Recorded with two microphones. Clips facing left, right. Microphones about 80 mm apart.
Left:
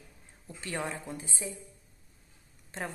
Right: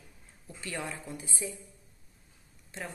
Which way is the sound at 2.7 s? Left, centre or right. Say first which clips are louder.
Left 3 dB; left.